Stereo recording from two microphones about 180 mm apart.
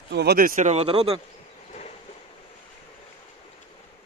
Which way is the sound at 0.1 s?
65° right (ahead or behind).